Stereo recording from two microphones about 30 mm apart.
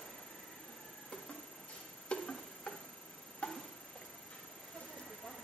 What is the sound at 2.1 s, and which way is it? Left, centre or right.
Music, left.